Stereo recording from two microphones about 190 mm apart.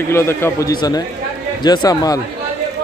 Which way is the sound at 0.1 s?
15° left (ahead or behind).